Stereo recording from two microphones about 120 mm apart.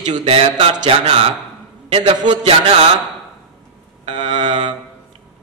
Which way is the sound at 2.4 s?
55° right (ahead or behind).